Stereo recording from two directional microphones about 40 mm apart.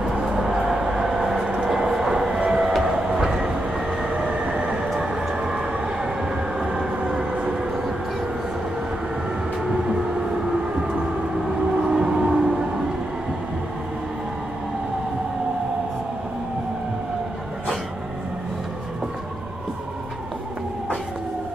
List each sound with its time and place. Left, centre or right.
0.0 s vehicle: centre
1.5 s train: centre
4.3 s train: right
4.9 s train: centre
11.8 s train: right